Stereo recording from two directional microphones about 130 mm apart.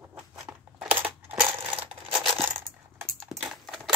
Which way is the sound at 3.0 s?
Centre (ahead or behind).